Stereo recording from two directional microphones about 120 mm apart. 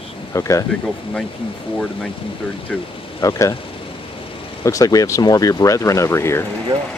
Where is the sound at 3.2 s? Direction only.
25° left (ahead or behind).